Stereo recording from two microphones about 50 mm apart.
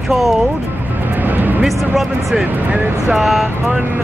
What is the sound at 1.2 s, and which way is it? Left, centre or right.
Music, right.